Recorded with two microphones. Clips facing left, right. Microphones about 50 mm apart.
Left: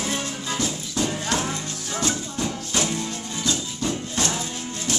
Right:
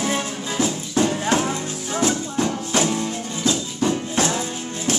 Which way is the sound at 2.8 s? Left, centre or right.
Centre.